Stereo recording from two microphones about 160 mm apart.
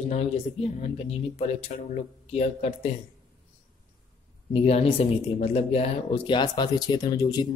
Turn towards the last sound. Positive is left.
turn(degrees=25)  # may be behind; listen again after turning